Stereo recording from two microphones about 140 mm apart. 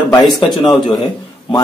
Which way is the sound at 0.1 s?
30° left (ahead or behind).